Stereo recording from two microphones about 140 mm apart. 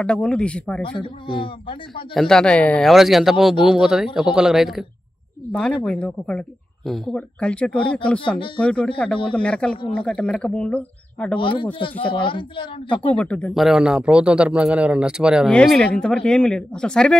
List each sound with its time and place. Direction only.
0.0 s speech: 5° left (ahead or behind)
0.8 s speech: 35° left (ahead or behind)
2.1 s speech: 5° left (ahead or behind)
11.3 s speech: 35° left (ahead or behind)
12.9 s speech: 10° left (ahead or behind)